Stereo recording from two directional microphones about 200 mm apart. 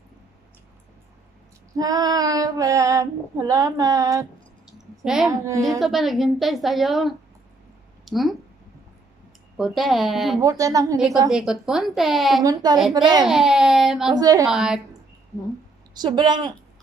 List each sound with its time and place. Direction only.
1.8 s female singing: 20° right (ahead or behind)
4.6 s a sound: centre (ahead or behind)
5.6 s a woman's voice: centre (ahead or behind)
9.6 s a woman's voice: centre (ahead or behind)
10.4 s female singing: 15° right (ahead or behind)
11.2 s a woman's voice: 5° right (ahead or behind)
14.1 s speech: 20° right (ahead or behind)
14.5 s a woman's voice: 5° right (ahead or behind)
15.9 s speech: 20° right (ahead or behind)